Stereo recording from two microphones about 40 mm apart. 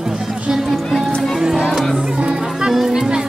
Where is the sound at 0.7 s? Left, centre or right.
Centre.